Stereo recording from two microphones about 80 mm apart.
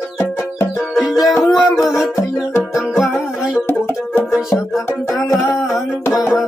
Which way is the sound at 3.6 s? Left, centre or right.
Left.